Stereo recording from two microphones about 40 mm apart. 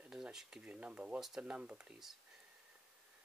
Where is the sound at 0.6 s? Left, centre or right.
Right.